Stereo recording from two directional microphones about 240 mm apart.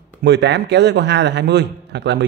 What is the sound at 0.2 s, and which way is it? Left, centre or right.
A man's voice, right.